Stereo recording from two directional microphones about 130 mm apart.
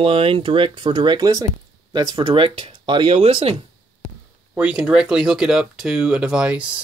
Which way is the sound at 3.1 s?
50° right (ahead or behind).